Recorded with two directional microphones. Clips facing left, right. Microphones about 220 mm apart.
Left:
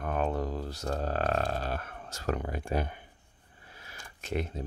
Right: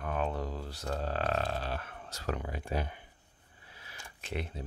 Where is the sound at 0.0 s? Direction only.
45° left (ahead or behind).